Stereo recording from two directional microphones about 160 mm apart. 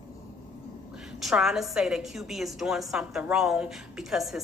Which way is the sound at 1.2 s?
Centre (ahead or behind).